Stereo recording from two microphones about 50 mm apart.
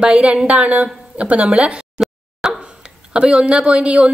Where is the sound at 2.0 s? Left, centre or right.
Centre.